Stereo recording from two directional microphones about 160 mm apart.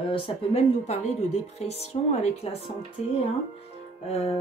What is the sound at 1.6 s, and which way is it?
Speech, 40° left (ahead or behind).